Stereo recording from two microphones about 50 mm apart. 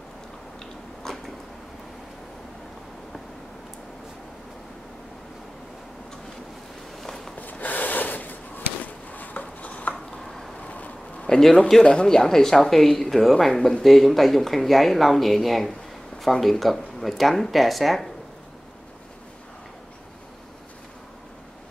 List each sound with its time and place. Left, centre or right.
1.0 s cat: centre
7.0 s walk: centre
7.3 s a sound: left
10.1 s a sound: centre
10.7 s bee: left
11.2 s a man's voice: centre